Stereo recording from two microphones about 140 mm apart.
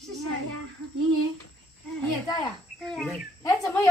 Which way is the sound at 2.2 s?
30° left (ahead or behind).